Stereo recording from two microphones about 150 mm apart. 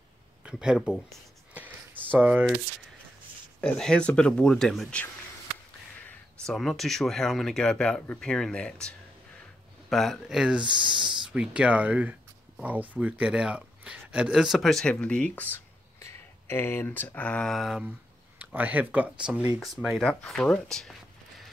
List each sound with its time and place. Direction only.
0.4 s speech: 5° right (ahead or behind)
2.1 s speech: 10° right (ahead or behind)
3.6 s speech: 5° left (ahead or behind)
6.0 s speech: 5° left (ahead or behind)
10.6 s speech: 30° right (ahead or behind)
11.2 s speech: 5° right (ahead or behind)